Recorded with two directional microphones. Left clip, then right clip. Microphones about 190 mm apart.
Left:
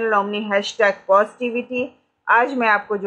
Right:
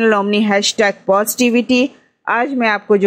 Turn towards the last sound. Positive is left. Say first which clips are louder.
# right 4 dB
turn(degrees=-25)  # may be behind; listen again after turning